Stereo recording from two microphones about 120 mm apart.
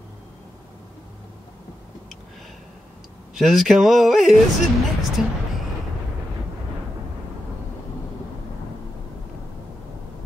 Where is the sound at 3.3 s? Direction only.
Centre (ahead or behind).